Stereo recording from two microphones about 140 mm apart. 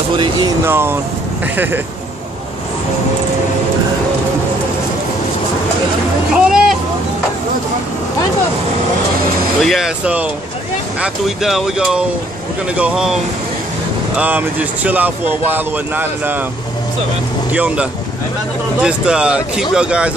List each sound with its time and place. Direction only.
0.7 s speech: 15° right (ahead or behind)
6.3 s boat: 5° right (ahead or behind)
9.6 s speech: centre (ahead or behind)
17.5 s speech: 10° right (ahead or behind)